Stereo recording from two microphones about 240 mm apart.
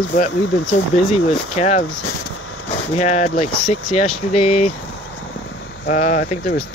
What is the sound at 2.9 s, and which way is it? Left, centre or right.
Speech, left.